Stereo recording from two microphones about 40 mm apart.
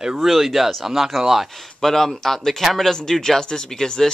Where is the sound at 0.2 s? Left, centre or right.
Centre.